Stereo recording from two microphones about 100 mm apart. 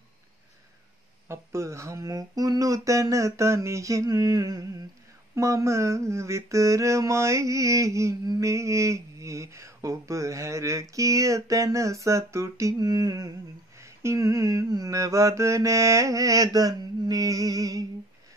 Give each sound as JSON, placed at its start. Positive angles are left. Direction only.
{"t": 1.3, "sound": "mantra", "side_deg": -30}